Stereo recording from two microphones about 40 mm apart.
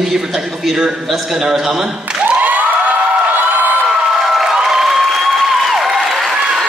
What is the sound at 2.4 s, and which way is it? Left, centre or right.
Crowd, right.